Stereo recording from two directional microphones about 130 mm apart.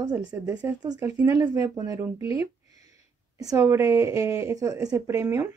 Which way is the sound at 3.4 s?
25° right (ahead or behind).